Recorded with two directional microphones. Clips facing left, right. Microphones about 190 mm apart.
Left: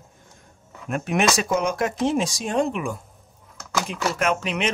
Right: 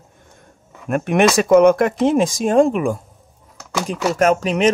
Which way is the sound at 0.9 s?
55° right (ahead or behind).